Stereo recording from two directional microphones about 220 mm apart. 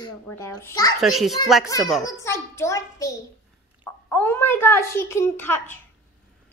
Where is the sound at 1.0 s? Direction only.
Centre (ahead or behind).